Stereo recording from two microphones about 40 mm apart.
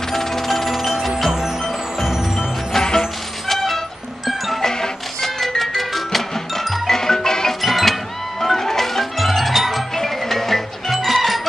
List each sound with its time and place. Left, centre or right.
0.1 s music: centre
2.0 s music: centre
2.7 s music: centre
3.4 s vehicle: centre
4.6 s music: centre
7.6 s music: centre